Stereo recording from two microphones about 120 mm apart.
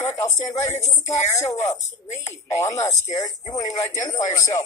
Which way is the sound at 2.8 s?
30° left (ahead or behind).